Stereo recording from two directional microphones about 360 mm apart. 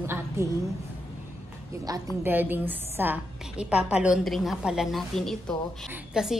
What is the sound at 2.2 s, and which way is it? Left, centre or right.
A woman's voice, centre.